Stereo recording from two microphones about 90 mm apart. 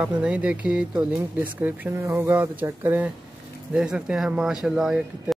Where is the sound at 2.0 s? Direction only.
25° right (ahead or behind); by 5.4 s 5° right (ahead or behind).